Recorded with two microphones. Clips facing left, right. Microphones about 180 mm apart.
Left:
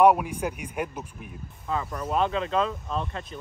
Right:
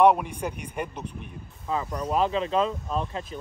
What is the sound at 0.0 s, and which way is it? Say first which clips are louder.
Speech: even; 10° left (ahead or behind).